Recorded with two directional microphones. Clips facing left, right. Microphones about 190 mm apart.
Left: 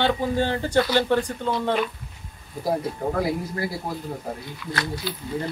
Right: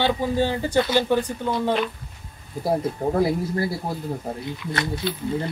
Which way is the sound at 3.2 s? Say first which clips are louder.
Right 6 dB; 30° right (ahead or behind).